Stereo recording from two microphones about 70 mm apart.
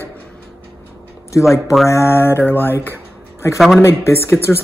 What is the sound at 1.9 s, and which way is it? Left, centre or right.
Speech, left.